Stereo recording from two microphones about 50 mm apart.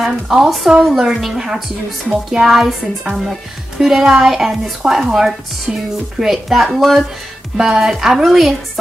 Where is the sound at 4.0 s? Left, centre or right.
Centre.